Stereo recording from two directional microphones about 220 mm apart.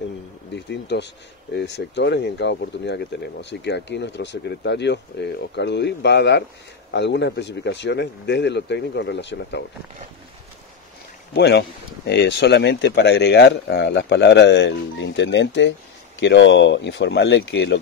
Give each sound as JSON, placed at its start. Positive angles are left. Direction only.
{"t": 0.8, "sound": "speech", "side_deg": 50}
{"t": 11.3, "sound": "speech", "side_deg": 50}